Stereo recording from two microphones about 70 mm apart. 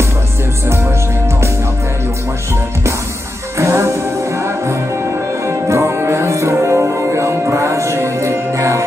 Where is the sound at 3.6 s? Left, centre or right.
Right.